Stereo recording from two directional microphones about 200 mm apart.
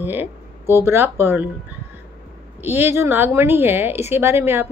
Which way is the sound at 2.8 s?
10° right (ahead or behind).